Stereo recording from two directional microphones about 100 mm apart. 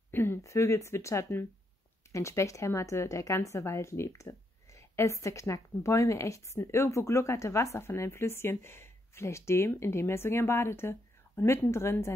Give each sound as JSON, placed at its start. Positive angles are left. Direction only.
{"t": 0.1, "sound": "a woman's voice", "side_deg": 20}